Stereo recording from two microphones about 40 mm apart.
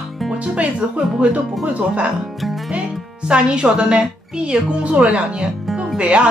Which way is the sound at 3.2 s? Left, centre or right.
Right.